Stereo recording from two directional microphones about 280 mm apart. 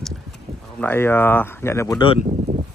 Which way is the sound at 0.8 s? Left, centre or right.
Centre.